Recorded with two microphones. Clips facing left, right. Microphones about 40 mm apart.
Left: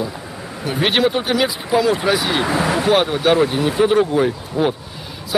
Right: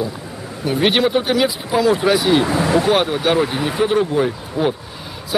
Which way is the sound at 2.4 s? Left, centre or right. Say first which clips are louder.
Even; left.